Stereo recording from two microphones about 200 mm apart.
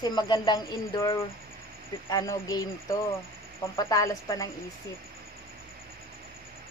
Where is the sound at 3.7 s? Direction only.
15° left (ahead or behind).